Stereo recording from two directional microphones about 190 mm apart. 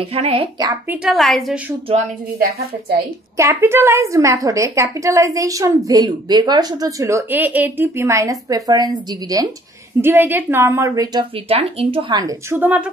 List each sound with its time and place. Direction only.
0.0 s speech: 30° right (ahead or behind)
0.8 s a woman's voice: centre (ahead or behind)
3.3 s a woman's voice: 15° right (ahead or behind)
11.4 s speech: 30° right (ahead or behind); by 12.8 s 10° right (ahead or behind)